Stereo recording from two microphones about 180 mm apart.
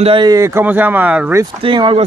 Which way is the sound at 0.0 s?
25° right (ahead or behind).